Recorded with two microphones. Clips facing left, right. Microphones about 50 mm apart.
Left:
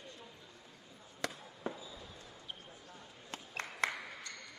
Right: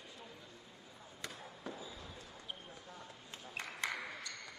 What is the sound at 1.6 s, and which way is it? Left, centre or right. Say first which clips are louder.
Chop: left 5 dB; left.